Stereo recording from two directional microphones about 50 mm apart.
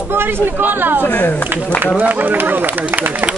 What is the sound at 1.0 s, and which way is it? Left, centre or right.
Speech, left.